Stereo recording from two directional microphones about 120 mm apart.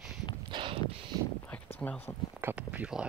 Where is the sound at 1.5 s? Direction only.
10° left (ahead or behind).